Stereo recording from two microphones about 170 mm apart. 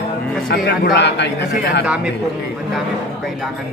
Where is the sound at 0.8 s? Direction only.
80° left.